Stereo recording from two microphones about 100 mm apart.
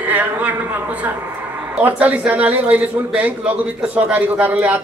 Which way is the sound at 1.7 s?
15° right (ahead or behind).